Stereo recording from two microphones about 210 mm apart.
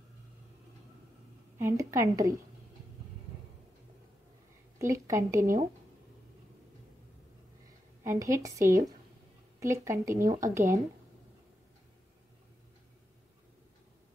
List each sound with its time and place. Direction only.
1.6 s a woman's voice: 15° right (ahead or behind)
4.7 s a woman's voice: 15° right (ahead or behind)
5.4 s speech: 40° right (ahead or behind)
8.0 s a woman's voice: 15° right (ahead or behind)